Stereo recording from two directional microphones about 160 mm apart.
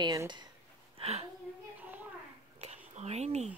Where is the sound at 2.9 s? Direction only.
40° right (ahead or behind).